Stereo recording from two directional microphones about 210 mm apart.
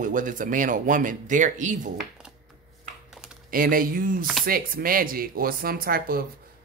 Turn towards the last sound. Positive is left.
turn(degrees=-45)  # may be behind; listen again after turning